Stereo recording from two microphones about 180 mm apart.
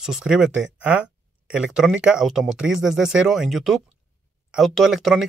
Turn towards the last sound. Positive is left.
turn(degrees=0)  # may be behind; listen again after turning